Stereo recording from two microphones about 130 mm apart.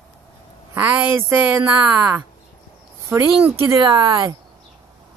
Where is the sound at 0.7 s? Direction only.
15° right (ahead or behind).